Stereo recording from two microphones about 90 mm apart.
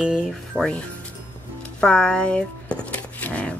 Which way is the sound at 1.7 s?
10° left (ahead or behind).